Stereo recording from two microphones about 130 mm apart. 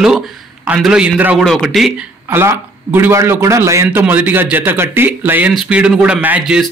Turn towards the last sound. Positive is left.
turn(degrees=0)  # may be behind; listen again after turning